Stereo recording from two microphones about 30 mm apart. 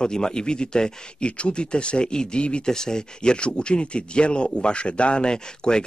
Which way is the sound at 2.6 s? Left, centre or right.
Left.